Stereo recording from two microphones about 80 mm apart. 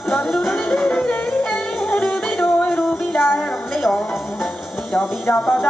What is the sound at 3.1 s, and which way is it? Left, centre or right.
Music, left.